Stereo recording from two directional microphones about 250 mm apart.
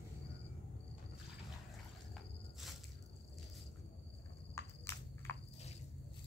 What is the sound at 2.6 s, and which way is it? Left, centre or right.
Squish, centre.